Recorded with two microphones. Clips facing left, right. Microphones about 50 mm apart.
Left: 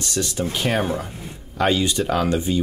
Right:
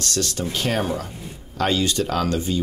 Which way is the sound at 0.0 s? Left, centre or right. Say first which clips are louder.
Left 1 dB; centre.